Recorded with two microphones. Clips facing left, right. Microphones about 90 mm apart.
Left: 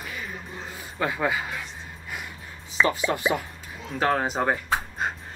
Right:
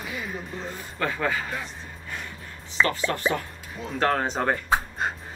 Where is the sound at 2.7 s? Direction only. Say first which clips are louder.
Left 1 dB; 15° left (ahead or behind).